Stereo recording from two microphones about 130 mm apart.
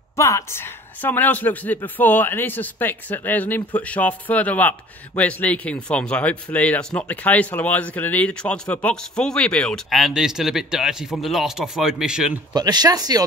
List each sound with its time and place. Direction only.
0.2 s a woman's voice: 20° left (ahead or behind); by 12.4 s 5° right (ahead or behind)
12.5 s speech: 30° right (ahead or behind)